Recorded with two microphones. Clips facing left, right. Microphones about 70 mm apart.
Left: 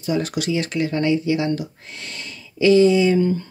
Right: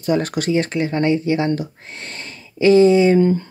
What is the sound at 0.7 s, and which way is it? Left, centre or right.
Speech, right.